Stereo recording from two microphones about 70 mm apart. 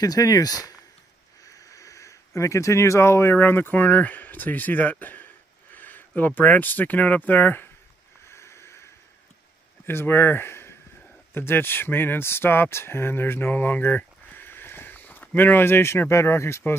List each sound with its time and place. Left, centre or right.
0.0 s speech: left
1.4 s speech: left
8.3 s a sound: left
9.8 s speech: left